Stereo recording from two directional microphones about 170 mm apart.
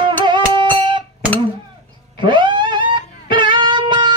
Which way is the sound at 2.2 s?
30° right (ahead or behind).